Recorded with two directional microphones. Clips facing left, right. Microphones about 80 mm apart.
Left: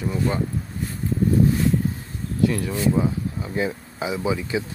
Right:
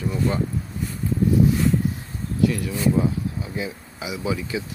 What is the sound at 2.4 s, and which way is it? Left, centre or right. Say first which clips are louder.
Speech: even; left.